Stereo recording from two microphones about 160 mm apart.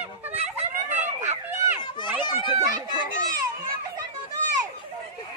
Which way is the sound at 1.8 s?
30° left (ahead or behind).